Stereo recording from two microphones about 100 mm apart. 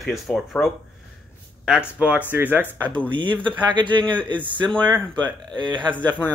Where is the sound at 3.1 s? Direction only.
55° right (ahead or behind).